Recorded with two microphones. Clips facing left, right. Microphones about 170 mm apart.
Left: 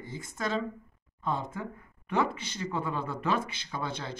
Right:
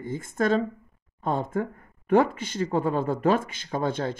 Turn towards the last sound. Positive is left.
turn(degrees=-50)  # may be behind; listen again after turning